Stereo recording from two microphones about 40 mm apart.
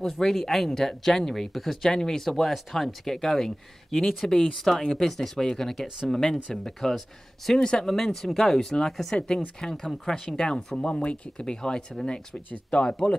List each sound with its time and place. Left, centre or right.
0.0 s speech: centre